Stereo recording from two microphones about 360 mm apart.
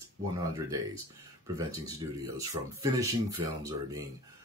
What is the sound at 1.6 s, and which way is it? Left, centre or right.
Speech, centre.